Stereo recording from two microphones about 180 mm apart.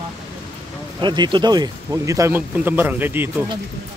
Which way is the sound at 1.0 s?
25° right (ahead or behind).